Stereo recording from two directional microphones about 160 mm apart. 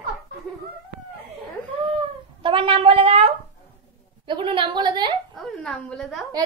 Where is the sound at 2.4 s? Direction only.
35° right (ahead or behind).